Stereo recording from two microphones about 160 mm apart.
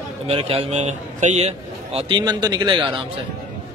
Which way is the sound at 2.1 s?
25° right (ahead or behind).